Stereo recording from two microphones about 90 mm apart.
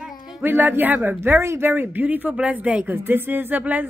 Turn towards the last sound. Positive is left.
turn(degrees=-20)  # may be behind; listen again after turning